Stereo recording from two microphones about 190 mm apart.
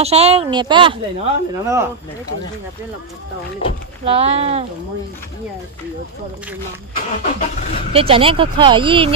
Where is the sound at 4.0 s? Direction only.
30° right (ahead or behind).